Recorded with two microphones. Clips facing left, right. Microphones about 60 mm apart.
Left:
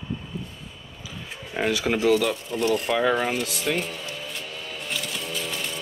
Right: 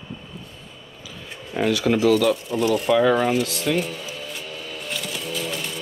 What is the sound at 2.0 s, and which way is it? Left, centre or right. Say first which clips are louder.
Speech: right 2 dB; centre.